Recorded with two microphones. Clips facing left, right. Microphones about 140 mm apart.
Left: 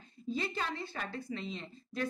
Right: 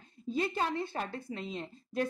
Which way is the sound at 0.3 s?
50° right (ahead or behind).